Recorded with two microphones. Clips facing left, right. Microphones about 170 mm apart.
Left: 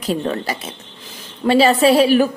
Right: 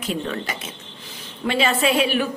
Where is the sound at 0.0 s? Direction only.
35° left (ahead or behind).